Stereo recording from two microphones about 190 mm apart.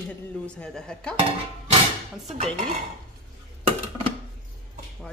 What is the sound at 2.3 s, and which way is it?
Dishes, 35° right (ahead or behind).